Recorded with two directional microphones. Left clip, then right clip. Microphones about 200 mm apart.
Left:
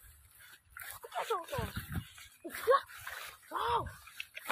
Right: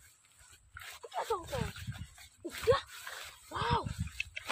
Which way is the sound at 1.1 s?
20° right (ahead or behind).